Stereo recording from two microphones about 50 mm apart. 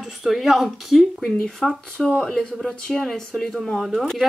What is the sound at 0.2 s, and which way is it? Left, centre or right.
Speech, centre.